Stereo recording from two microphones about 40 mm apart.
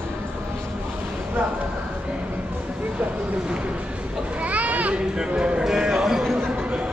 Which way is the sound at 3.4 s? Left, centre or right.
Right.